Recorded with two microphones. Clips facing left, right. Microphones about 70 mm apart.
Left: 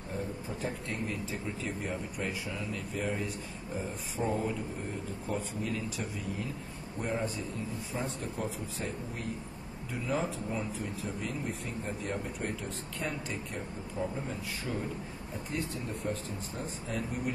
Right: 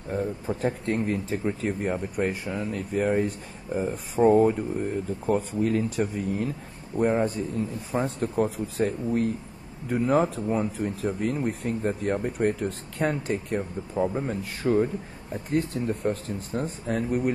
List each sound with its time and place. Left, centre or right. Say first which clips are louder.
0.1 s speech: right 10 dB; right